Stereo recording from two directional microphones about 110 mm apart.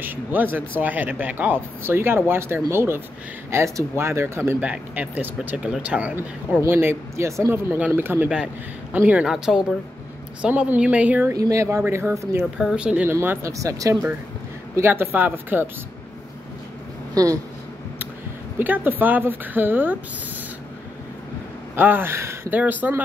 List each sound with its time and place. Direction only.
0.0 s speech: 15° right (ahead or behind)
4.6 s speech: 10° right (ahead or behind)
10.4 s speech: 15° right (ahead or behind)
11.3 s speech: 30° right (ahead or behind)
12.5 s speech: 5° right (ahead or behind)
17.1 s speech: 30° right (ahead or behind)
18.6 s speech: 15° right (ahead or behind)
21.7 s speech: 20° right (ahead or behind)